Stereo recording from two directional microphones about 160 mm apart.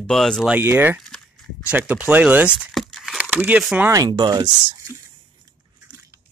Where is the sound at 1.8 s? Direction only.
10° right (ahead or behind).